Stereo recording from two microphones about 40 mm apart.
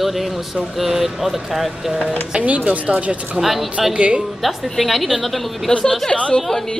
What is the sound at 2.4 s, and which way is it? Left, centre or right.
Speech, right.